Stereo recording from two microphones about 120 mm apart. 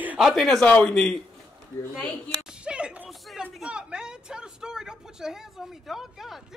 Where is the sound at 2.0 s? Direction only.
5° right (ahead or behind).